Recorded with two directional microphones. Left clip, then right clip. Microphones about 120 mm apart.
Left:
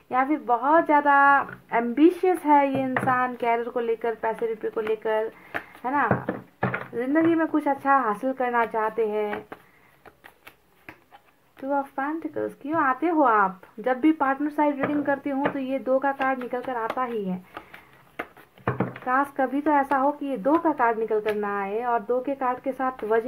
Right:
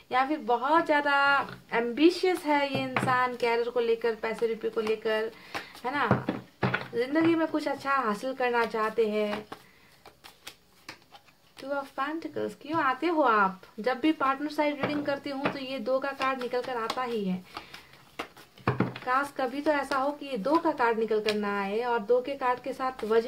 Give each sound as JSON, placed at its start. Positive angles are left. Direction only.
{"t": 0.1, "sound": "speech", "side_deg": 30}
{"t": 11.7, "sound": "speech", "side_deg": 30}
{"t": 19.0, "sound": "speech", "side_deg": 30}